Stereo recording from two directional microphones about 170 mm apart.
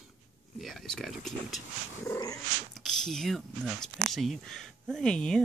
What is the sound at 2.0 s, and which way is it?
Dog, 20° left (ahead or behind).